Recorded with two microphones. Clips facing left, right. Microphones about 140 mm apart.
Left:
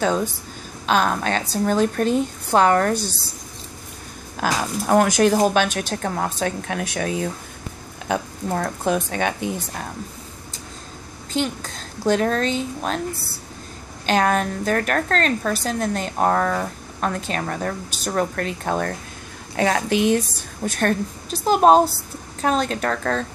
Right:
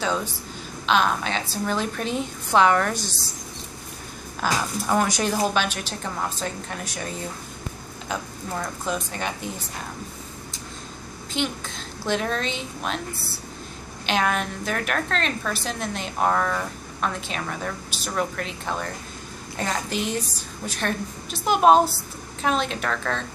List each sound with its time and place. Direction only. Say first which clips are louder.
0.0 s a woman's voice: left 5 dB; 50° left (ahead or behind)
4.8 s a woman's voice: left 8 dB; 55° left (ahead or behind); by 7.2 s 75° left (ahead or behind)
8.1 s a woman's voice: left 7 dB; 65° left (ahead or behind)
11.3 s a woman's voice: left 4 dB; 40° left (ahead or behind)
14.0 s a woman's voice: left 5 dB; 40° left (ahead or behind)
19.5 s a woman's voice: left 8 dB; 70° left (ahead or behind)
20.6 s a woman's voice: left 7 dB; 50° left (ahead or behind)
21.5 s a woman's voice: left 2 dB; 40° left (ahead or behind)